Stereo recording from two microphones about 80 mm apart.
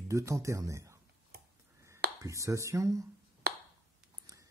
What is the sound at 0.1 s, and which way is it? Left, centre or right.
Speech, right.